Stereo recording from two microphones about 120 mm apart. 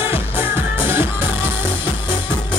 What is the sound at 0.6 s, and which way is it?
Music, 20° right (ahead or behind).